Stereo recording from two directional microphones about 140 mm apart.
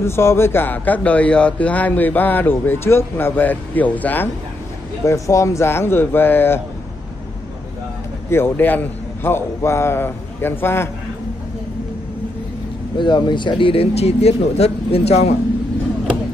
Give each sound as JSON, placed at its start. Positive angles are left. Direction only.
{"t": 0.0, "sound": "speech", "side_deg": 20}
{"t": 5.0, "sound": "speech", "side_deg": 20}
{"t": 8.3, "sound": "speech", "side_deg": 15}
{"t": 12.9, "sound": "speech", "side_deg": 35}